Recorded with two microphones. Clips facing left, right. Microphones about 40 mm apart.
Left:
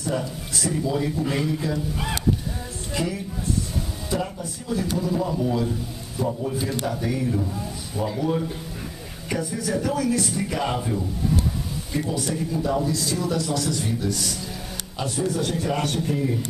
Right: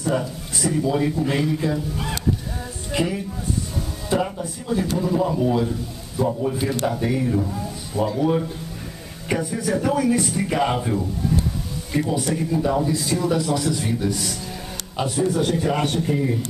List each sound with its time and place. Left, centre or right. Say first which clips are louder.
0.2 s a man's voice: right 2 dB; centre
0.8 s a man's voice: right 3 dB; centre
2.9 s a man's voice: right 4 dB; centre